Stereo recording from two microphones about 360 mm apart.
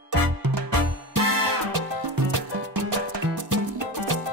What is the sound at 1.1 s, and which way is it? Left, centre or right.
Music, right.